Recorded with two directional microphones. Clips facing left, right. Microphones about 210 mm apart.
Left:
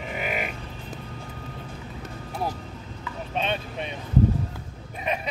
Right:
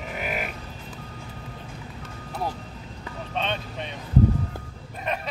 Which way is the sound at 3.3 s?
10° left (ahead or behind).